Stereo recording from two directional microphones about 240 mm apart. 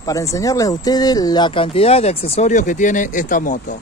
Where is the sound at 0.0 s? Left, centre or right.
Centre; by 3.7 s left.